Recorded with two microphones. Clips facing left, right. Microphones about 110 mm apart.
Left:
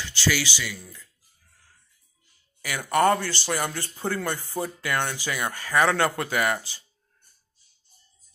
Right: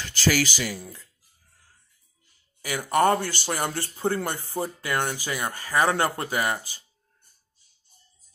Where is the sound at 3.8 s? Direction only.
20° right (ahead or behind).